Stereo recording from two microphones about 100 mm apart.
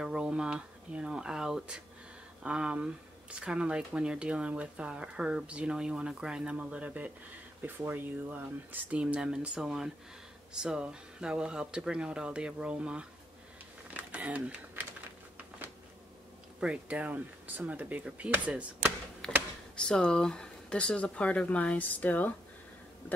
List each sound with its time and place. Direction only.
0.0 s speech: 5° right (ahead or behind)
13.8 s a sound: 15° right (ahead or behind)
16.5 s speech: 15° right (ahead or behind)
19.2 s speech: 5° left (ahead or behind)